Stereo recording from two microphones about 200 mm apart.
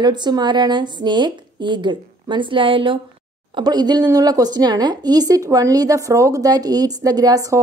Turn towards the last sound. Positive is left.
turn(degrees=-15)  # may be behind; listen again after turning